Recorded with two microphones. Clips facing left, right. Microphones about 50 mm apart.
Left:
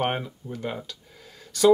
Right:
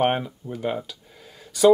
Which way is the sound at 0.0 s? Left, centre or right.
Centre.